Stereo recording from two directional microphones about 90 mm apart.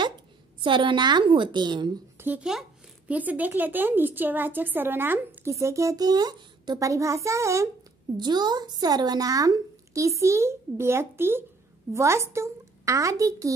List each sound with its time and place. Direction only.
0.6 s a woman's voice: 70° right (ahead or behind)
2.1 s a sound: 20° right (ahead or behind)
3.1 s a woman's voice: 20° right (ahead or behind)
5.5 s speech: 35° right (ahead or behind)
8.2 s speech: 50° right (ahead or behind)